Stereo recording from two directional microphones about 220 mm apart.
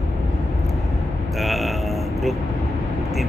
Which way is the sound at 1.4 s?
Centre (ahead or behind).